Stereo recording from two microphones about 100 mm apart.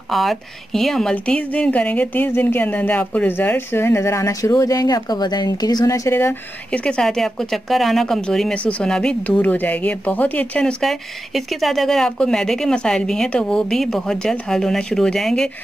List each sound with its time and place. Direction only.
0.1 s speech: centre (ahead or behind); by 6.3 s 25° left (ahead or behind)
6.7 s speech: 10° left (ahead or behind)